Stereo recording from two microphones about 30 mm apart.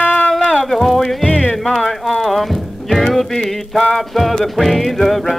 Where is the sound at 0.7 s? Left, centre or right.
Centre.